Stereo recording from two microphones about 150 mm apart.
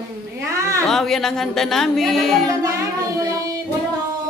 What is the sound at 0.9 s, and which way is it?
Speech, centre (ahead or behind).